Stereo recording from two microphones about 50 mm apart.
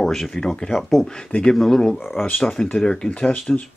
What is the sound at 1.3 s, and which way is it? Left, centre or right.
Speech, left.